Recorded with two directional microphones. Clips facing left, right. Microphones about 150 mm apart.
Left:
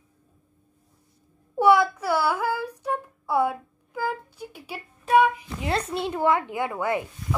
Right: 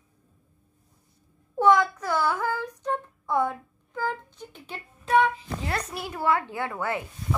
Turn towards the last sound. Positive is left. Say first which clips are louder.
# left 3 dB
turn(degrees=15)  # may be behind; listen again after turning